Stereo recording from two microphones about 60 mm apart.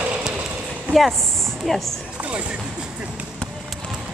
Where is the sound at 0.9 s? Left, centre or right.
Centre.